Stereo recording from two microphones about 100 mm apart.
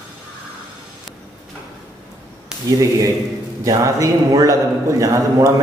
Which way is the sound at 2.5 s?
10° right (ahead or behind).